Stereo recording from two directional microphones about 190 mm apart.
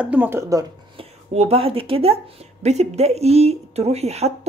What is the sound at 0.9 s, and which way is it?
Speech, 30° right (ahead or behind).